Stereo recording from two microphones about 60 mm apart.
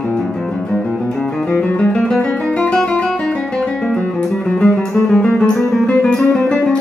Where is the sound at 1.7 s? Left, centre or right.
Left.